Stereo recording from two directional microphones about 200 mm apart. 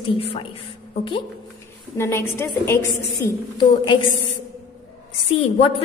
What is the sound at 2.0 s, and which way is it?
A woman's voice, 10° left (ahead or behind).